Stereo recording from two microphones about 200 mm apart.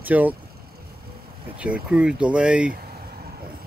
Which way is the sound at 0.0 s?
10° right (ahead or behind).